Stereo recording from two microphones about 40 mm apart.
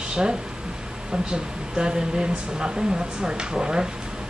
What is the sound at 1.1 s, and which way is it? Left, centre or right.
A woman's voice, right.